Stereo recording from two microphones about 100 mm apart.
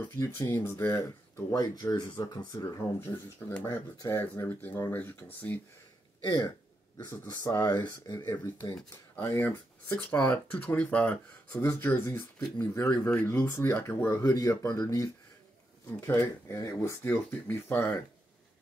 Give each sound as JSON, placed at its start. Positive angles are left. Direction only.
{"t": 0.0, "sound": "speech", "side_deg": 20}
{"t": 1.5, "sound": "speech", "side_deg": 40}
{"t": 2.6, "sound": "speech", "side_deg": 25}
{"t": 6.2, "sound": "speech", "side_deg": 40}
{"t": 10.0, "sound": "speech", "side_deg": 15}
{"t": 11.5, "sound": "speech", "side_deg": 30}
{"t": 16.0, "sound": "speech", "side_deg": 25}